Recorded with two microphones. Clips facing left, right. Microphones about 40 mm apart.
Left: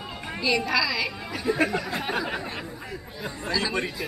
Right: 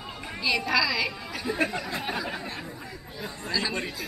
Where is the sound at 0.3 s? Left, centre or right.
Centre.